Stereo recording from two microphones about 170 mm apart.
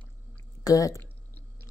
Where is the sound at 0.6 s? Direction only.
20° left (ahead or behind).